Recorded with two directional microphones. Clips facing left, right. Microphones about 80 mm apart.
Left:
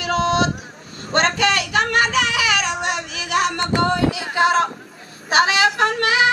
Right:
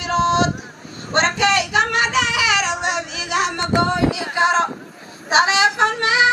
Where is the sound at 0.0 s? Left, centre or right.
Right.